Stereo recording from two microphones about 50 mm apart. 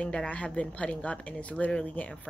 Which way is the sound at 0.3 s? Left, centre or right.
Left.